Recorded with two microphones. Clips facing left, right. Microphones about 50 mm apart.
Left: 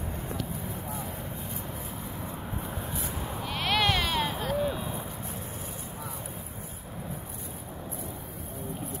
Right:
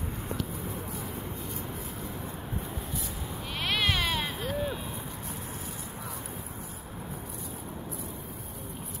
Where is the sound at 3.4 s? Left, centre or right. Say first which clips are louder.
Left 3 dB; centre.